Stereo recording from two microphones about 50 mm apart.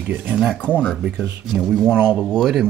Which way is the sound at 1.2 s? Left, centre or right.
Centre.